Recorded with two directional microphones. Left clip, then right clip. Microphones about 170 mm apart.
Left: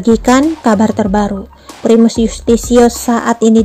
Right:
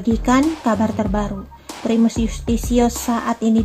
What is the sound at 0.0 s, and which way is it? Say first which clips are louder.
A woman's voice: left 8 dB; 45° left (ahead or behind).